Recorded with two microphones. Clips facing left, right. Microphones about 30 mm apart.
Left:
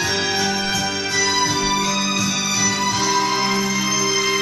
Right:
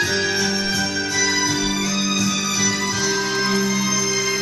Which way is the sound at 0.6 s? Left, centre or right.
Left.